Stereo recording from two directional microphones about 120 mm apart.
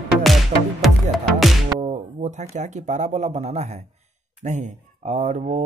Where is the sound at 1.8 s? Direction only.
65° right (ahead or behind).